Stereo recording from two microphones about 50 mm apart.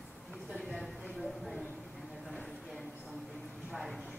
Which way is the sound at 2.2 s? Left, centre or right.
Centre.